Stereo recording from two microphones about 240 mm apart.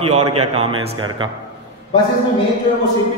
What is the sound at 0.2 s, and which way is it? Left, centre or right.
Speech, right.